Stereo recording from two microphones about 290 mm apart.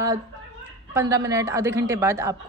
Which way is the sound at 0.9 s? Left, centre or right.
Centre.